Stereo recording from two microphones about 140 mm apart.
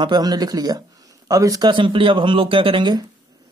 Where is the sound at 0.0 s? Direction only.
30° right (ahead or behind).